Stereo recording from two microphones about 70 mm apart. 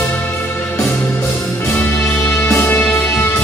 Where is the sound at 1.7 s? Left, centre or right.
Centre.